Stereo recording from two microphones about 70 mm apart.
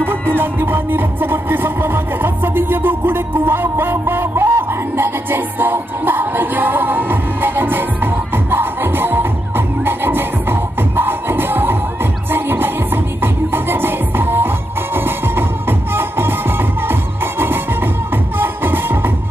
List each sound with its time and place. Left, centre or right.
0.0 s music: right